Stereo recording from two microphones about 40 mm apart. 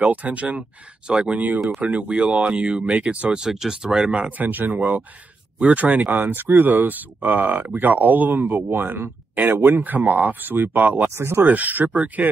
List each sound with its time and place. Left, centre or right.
0.0 s speech: right
0.6 s speech: right
1.3 s speech: right
3.3 s speech: centre
4.4 s speech: right
6.3 s speech: right
11.1 s speech: right
11.4 s speech: right